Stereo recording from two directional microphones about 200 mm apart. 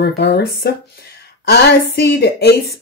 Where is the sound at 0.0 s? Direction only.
55° left (ahead or behind).